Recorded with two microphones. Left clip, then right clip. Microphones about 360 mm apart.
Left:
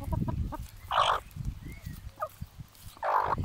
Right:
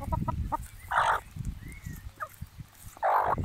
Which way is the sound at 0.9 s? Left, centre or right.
Centre.